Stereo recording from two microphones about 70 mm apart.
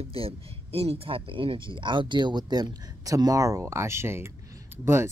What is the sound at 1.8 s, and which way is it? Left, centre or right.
Speech, right.